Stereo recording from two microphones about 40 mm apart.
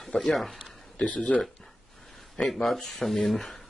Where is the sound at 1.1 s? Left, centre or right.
Left.